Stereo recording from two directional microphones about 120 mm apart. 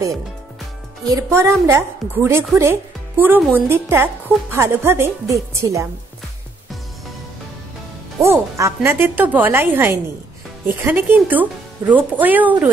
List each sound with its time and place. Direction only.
1.1 s a woman's voice: 25° right (ahead or behind)
8.2 s a woman's voice: 25° right (ahead or behind)